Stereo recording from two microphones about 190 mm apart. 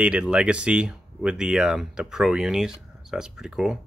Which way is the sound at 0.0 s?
5° right (ahead or behind).